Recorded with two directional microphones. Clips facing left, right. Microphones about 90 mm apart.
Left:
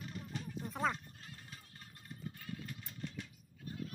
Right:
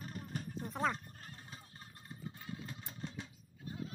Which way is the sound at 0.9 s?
35° right (ahead or behind).